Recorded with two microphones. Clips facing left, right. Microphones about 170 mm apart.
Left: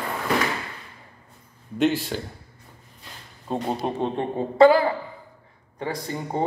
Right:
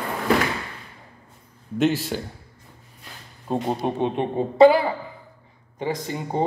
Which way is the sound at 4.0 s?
20° right (ahead or behind).